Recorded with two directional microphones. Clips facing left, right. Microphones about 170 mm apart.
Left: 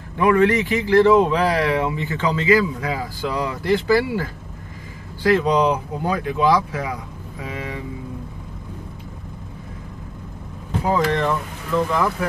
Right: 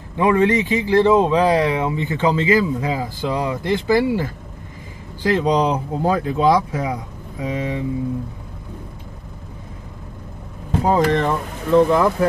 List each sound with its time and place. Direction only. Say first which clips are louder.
0.2 s speech: even; 20° right (ahead or behind)
10.8 s speech: right 3 dB; 35° right (ahead or behind)